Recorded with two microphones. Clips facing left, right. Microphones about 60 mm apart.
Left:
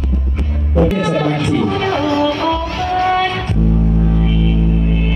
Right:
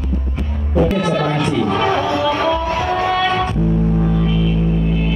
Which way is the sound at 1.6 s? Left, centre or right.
Right.